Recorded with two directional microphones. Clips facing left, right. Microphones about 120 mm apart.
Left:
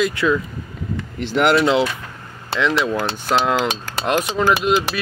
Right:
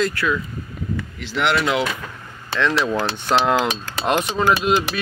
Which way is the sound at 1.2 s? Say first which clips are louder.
Left 5 dB; 45° left (ahead or behind).